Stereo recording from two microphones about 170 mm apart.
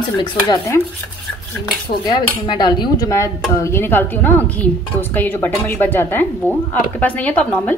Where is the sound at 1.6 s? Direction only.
25° left (ahead or behind).